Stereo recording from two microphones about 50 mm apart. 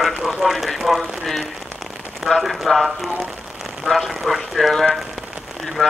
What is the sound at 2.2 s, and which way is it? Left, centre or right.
Speech, centre.